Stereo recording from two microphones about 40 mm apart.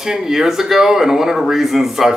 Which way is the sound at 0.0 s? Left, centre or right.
Centre.